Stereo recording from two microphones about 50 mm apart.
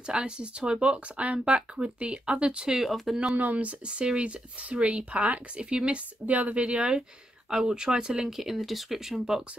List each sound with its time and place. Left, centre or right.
0.0 s speech: right
2.8 s speech: centre
3.3 s speech: right
5.6 s speech: centre